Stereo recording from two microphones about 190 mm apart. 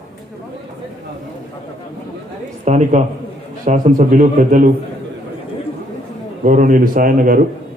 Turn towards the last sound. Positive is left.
turn(degrees=-45)  # may be behind; listen again after turning